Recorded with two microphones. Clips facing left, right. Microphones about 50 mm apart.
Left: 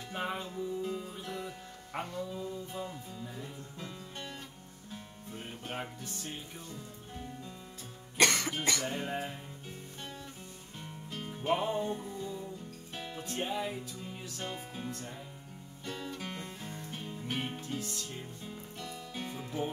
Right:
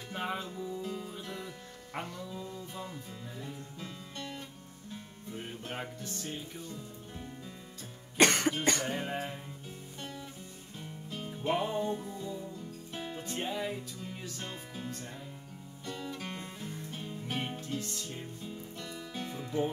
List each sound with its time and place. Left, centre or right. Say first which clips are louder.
0.1 s music: even; centre
2.7 s music: left 2 dB; centre
5.7 s music: left 2 dB; centre
8.2 s cough: right 3 dB; right
8.8 s music: right 1 dB; centre
11.1 s music: left 1 dB; centre